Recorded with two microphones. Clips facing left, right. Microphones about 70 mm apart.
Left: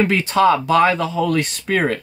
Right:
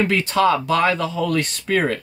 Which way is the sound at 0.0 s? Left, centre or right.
Left.